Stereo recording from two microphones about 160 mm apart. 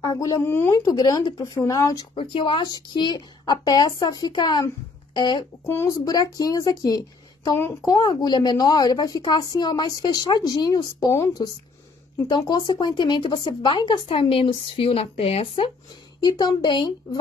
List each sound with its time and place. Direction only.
0.0 s speech: 20° left (ahead or behind)
2.1 s speech: 30° left (ahead or behind)
16.2 s speech: 25° left (ahead or behind)